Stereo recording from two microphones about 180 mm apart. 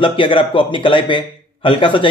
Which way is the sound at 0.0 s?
30° left (ahead or behind).